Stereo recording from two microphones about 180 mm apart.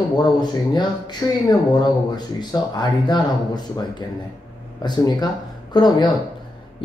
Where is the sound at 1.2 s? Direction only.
20° left (ahead or behind).